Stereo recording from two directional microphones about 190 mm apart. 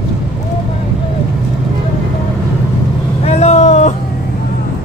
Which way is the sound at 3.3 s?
35° left (ahead or behind).